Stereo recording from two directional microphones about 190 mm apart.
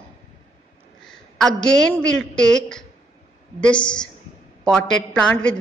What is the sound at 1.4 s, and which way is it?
A woman's voice, 5° left (ahead or behind).